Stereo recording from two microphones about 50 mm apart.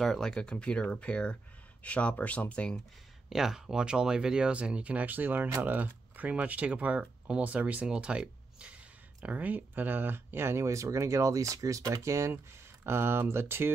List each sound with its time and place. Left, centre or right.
0.0 s speech: centre
0.4 s speech: centre
3.3 s speech: centre
9.2 s speech: right
12.8 s speech: right